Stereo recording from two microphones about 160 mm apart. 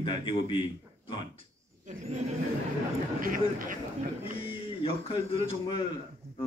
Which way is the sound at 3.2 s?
60° right (ahead or behind).